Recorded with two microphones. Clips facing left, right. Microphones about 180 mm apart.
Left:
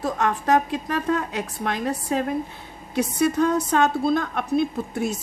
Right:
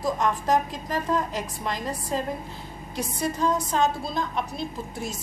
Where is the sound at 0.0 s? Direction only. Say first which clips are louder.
Left 1 dB; 65° left (ahead or behind).